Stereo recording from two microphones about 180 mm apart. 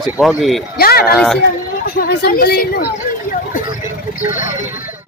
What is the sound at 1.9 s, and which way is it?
Speech, 55° left (ahead or behind).